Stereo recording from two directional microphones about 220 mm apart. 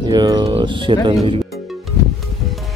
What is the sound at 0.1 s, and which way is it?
Speech, 20° right (ahead or behind).